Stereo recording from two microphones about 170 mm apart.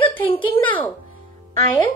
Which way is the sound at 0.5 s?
10° left (ahead or behind).